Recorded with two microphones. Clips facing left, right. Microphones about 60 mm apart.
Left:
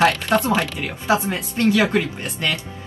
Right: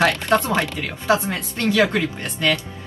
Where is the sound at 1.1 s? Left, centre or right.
Left.